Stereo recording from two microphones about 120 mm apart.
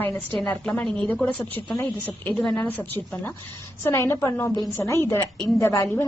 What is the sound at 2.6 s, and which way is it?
A woman's voice, 10° left (ahead or behind).